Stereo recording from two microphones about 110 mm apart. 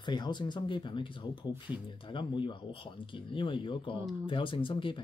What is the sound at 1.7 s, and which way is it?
Speech, 15° right (ahead or behind).